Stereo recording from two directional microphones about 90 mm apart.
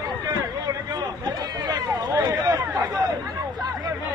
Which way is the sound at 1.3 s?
45° right (ahead or behind).